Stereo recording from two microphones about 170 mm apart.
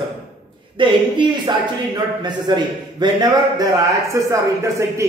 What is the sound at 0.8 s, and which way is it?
Speech, 30° right (ahead or behind).